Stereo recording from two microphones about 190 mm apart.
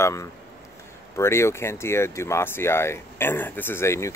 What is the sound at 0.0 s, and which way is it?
A man's voice, 15° left (ahead or behind).